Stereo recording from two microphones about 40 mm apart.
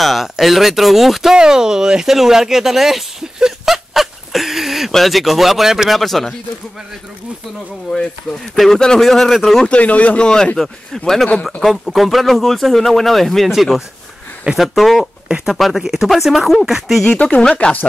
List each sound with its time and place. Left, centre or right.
0.0 s speech: centre
1.3 s speech: centre
3.3 s a sound: centre
4.9 s speech: centre
7.9 s speech: centre
9.7 s speech: left
10.2 s speech: left
10.9 s speech: centre
14.6 s speech: centre
17.0 s speech: left